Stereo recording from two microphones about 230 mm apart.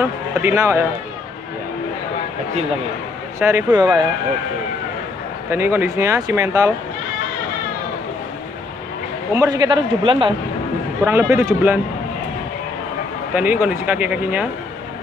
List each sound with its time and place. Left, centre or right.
0.0 s speech: centre
3.3 s speech: centre
5.5 s speech: centre
9.3 s speech: centre
11.1 s speech: centre
13.3 s speech: centre